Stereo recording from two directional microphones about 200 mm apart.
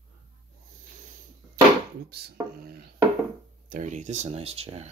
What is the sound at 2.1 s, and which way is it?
Speech, 50° right (ahead or behind).